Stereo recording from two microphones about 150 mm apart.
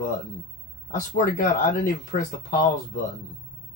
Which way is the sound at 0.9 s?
65° left (ahead or behind).